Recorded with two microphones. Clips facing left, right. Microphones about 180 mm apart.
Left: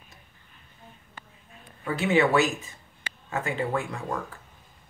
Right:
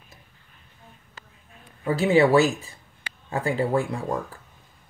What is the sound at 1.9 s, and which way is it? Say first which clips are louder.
Speech: right 4 dB; 35° right (ahead or behind).